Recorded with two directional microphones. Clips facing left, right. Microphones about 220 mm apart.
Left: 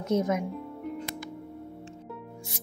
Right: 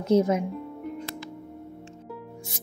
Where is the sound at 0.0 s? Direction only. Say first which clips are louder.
Right 5 dB; 30° right (ahead or behind).